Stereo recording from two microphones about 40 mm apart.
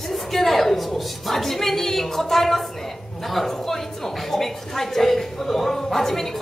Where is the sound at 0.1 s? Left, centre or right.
Centre.